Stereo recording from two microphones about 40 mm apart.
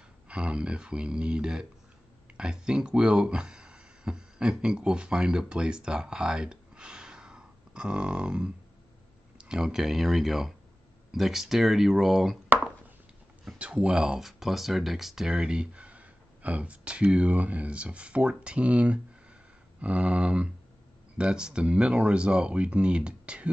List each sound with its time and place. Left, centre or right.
0.3 s speech: right; by 12.4 s centre
13.6 s speech: right
14.2 s speech: centre
15.3 s speech: right